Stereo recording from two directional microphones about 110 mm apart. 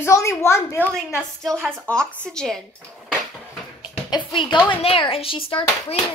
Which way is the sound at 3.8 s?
45° left (ahead or behind).